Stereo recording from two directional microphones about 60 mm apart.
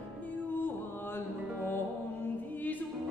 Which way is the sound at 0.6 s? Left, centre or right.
Left.